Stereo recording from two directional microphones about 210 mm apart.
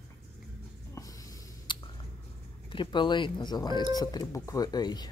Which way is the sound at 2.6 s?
20° left (ahead or behind).